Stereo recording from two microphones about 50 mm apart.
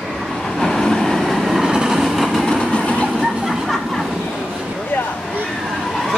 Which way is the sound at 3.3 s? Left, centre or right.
Centre.